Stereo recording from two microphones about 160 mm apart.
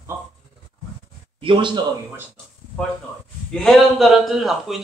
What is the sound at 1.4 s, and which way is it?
Speech, 30° right (ahead or behind).